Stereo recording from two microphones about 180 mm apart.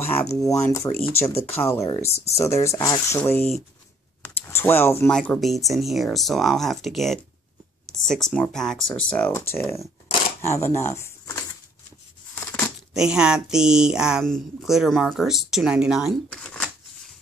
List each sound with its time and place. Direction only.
0.0 s speech: 10° left (ahead or behind)
12.4 s a sound: 10° left (ahead or behind)
12.9 s speech: 5° right (ahead or behind)